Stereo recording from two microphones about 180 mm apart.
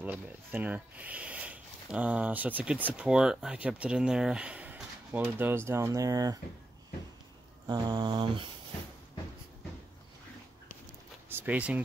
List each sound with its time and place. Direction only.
0.0 s speech: 10° right (ahead or behind)
7.6 s mantra: 25° right (ahead or behind)
11.2 s speech: 10° right (ahead or behind)